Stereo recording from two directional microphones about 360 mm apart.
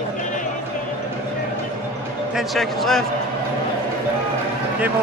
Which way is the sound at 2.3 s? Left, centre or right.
Centre.